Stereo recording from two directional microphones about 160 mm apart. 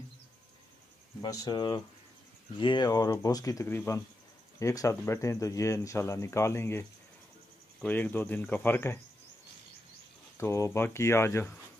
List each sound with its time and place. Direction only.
1.2 s speech: 25° left (ahead or behind)
10.3 s speech: 20° left (ahead or behind)